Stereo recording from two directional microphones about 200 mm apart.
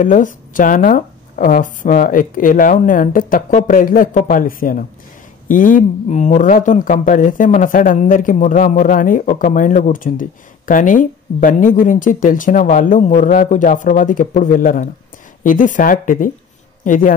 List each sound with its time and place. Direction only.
0.0 s speech: 40° left (ahead or behind)